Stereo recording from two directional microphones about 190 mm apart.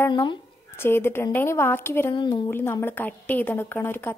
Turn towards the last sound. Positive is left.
turn(degrees=10)  # may be behind; listen again after turning